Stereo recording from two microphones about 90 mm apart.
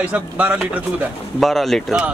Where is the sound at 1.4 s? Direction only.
Centre (ahead or behind).